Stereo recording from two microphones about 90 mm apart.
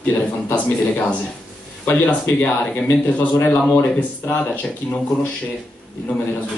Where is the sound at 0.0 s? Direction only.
20° left (ahead or behind).